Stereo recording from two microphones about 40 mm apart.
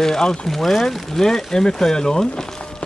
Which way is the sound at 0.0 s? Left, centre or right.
Centre.